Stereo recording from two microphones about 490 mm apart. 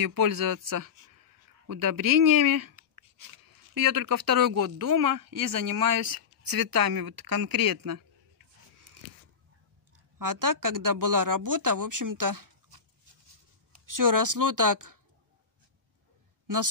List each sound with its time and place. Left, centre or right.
0.0 s speech: right
10.1 s speech: right
13.8 s speech: right